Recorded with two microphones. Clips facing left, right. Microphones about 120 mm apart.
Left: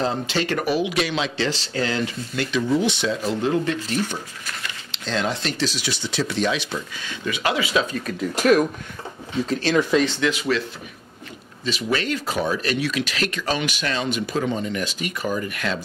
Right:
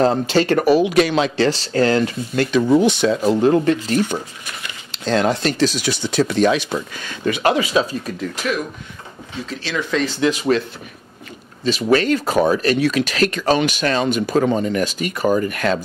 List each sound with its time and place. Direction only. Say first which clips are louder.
0.0 s speech: right 8 dB; 45° right (ahead or behind)
8.4 s speech: left 9 dB; 45° left (ahead or behind)
10.3 s speech: right 4 dB; 35° right (ahead or behind)
11.6 s speech: right 8 dB; 40° right (ahead or behind)